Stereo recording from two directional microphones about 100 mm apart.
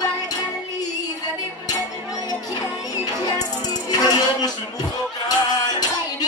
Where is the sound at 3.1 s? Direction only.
40° left (ahead or behind).